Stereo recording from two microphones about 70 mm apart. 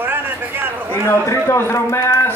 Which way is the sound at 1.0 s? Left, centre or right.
Left.